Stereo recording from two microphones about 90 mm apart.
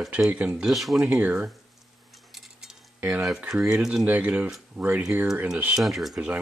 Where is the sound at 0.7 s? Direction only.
Centre (ahead or behind).